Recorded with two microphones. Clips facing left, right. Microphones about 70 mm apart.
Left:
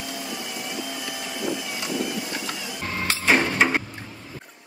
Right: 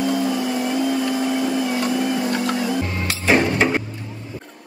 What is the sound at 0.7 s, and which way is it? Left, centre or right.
Vacuum cleaner, right.